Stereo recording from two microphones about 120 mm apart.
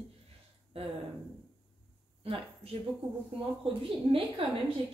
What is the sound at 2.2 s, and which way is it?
A woman's voice, 55° right (ahead or behind).